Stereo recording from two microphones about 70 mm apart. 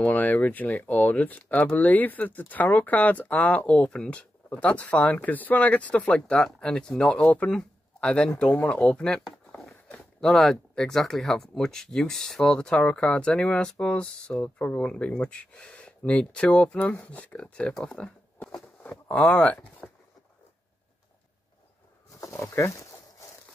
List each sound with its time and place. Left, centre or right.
0.0 s speech: left
17.4 s speech: centre
17.7 s a sound: centre
19.0 s speech: centre
19.8 s a sound: centre
22.1 s wild animals: left